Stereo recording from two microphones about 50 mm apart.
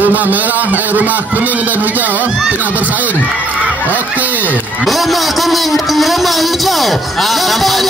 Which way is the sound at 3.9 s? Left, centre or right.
Right.